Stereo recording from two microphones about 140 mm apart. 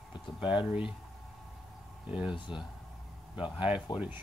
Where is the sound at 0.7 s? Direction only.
10° right (ahead or behind).